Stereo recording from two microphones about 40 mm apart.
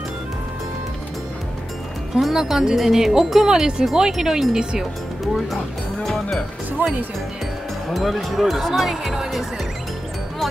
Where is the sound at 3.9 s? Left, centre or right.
Centre.